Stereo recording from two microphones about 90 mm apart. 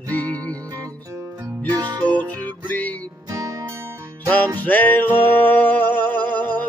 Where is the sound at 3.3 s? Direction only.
40° right (ahead or behind).